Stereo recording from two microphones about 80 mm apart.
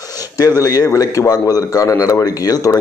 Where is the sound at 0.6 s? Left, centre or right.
Left.